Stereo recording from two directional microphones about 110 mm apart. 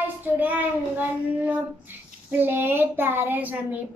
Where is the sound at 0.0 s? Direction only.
15° right (ahead or behind).